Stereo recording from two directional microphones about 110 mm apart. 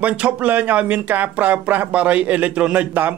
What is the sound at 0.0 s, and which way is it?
Speech, 15° right (ahead or behind).